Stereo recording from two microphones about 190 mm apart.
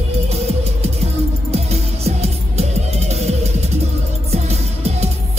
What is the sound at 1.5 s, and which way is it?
Music, 35° right (ahead or behind).